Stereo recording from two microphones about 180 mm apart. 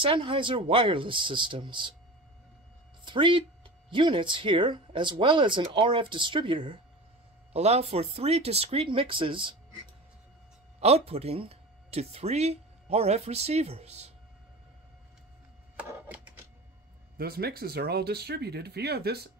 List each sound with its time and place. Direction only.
0.0 s speech: 30° right (ahead or behind)
3.1 s speech: 25° right (ahead or behind)
10.8 s speech: 35° right (ahead or behind)
15.7 s a sound: 10° right (ahead or behind)
17.2 s speech: 60° right (ahead or behind)